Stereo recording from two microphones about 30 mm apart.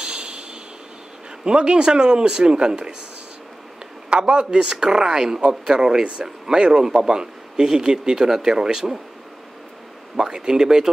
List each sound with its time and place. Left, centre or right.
0.0 s a sound: right
1.4 s speech: right
4.1 s speech: right
10.1 s speech: right